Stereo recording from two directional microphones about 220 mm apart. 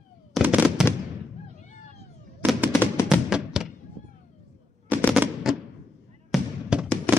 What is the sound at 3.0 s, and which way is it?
Music, 5° right (ahead or behind).